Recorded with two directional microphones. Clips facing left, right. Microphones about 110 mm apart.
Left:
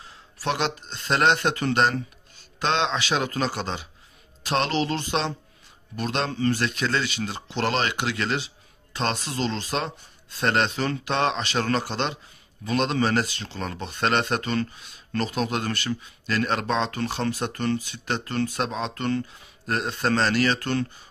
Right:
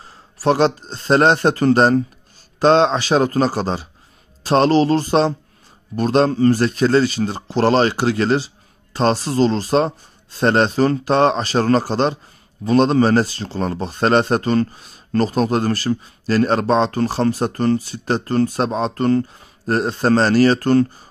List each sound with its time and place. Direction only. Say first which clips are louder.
0.0 s speech: right 10 dB; 40° right (ahead or behind)